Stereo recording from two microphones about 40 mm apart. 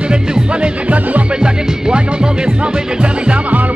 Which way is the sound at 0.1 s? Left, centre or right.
Right.